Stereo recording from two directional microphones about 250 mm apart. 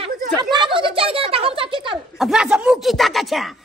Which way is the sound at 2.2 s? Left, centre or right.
Centre.